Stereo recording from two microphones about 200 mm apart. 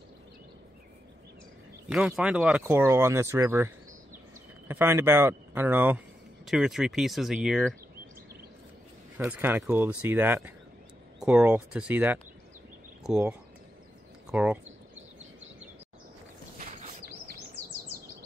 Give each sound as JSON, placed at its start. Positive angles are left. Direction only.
{"t": 1.9, "sound": "speech", "side_deg": -5}
{"t": 9.2, "sound": "speech", "side_deg": -10}
{"t": 16.5, "sound": "a sound", "side_deg": -35}